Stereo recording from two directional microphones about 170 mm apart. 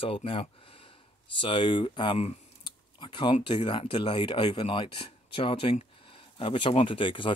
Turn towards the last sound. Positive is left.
turn(degrees=30)  # may be behind; listen again after turning